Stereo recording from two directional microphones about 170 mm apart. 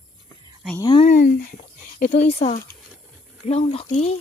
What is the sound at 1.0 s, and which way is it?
Speech, 50° left (ahead or behind).